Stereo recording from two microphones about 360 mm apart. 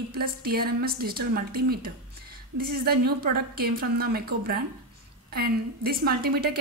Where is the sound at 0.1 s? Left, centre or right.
Right.